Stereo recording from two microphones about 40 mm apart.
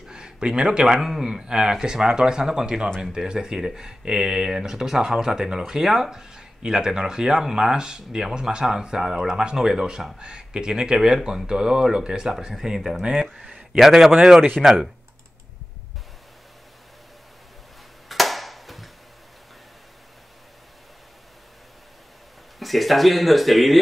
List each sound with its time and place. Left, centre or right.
0.1 s speech: right
0.9 s speech: centre
18.0 s a sound: centre
22.6 s speech: centre